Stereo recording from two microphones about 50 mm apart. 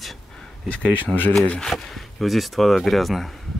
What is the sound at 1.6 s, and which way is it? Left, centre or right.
Speech, centre.